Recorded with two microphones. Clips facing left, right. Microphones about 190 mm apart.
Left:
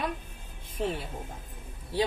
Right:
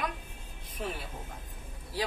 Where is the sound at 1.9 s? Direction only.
25° left (ahead or behind).